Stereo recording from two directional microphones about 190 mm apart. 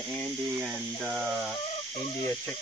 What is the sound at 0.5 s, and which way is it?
Speech, 10° right (ahead or behind).